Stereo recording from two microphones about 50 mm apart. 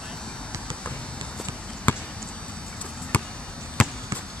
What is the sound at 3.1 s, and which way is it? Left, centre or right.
Basketball bounce, left.